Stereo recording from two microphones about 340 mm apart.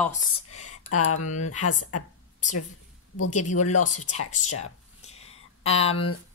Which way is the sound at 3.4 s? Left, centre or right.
Left.